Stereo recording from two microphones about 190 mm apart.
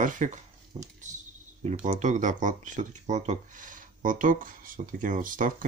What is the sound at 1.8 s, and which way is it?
Speech, 40° right (ahead or behind).